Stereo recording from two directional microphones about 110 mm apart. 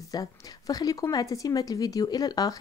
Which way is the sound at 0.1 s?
35° left (ahead or behind).